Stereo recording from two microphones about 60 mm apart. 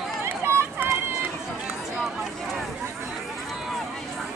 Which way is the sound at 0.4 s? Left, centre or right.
Right.